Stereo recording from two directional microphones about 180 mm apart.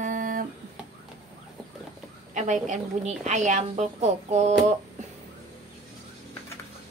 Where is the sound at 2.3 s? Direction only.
45° right (ahead or behind).